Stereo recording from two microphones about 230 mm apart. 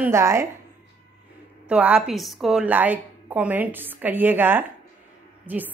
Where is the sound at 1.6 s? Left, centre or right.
Centre.